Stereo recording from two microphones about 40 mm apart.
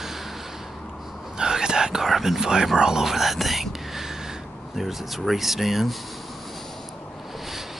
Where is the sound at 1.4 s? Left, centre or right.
Centre.